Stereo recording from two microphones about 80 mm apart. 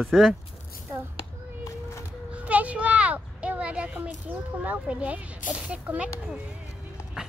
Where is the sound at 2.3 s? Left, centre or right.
Centre.